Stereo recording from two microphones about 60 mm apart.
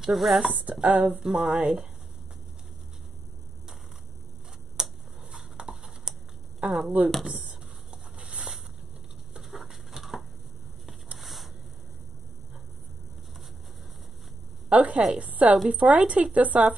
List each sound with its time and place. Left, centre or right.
0.0 s speech: centre
0.6 s speech: right
4.7 s a sound: centre
6.6 s speech: right
8.2 s a sound: centre
14.7 s speech: centre